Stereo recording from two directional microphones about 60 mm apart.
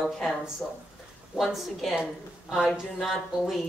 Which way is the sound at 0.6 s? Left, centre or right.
Centre.